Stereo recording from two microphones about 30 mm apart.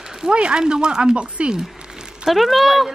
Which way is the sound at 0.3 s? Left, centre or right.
Right.